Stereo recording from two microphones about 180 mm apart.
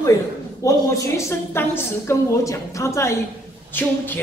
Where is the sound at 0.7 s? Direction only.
15° left (ahead or behind).